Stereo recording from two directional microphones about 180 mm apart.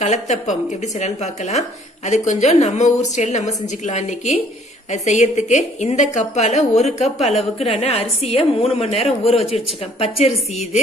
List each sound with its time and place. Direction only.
0.0 s a woman's voice: 40° left (ahead or behind)